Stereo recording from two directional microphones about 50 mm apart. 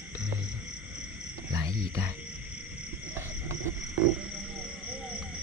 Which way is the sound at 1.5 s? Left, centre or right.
Right.